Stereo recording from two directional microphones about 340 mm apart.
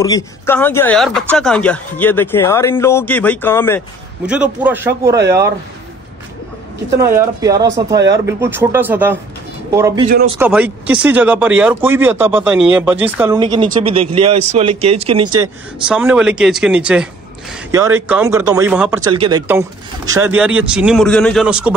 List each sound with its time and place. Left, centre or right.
0.0 s speech: centre
7.2 s speech: centre
10.0 s speech: right
10.4 s speech: centre
15.4 s speech: centre